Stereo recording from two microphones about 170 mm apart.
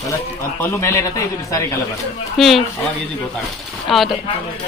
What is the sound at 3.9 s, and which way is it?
Speech, centre (ahead or behind).